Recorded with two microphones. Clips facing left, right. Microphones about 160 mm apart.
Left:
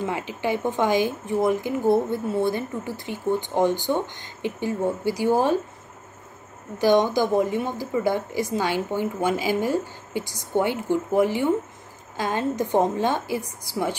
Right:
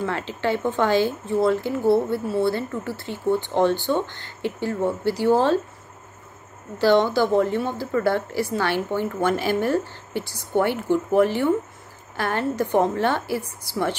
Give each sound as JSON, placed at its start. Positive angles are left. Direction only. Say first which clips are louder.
{"t": 0.0, "sound": "speech", "louder": "right 1 dB", "side_deg": 15}
{"t": 6.8, "sound": "speech", "louder": "right 1 dB", "side_deg": 15}